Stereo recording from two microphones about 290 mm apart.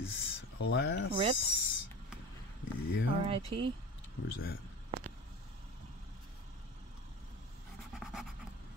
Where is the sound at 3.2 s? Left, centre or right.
Centre.